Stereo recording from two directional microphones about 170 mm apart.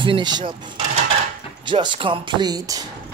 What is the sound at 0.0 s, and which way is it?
Speech, 25° right (ahead or behind).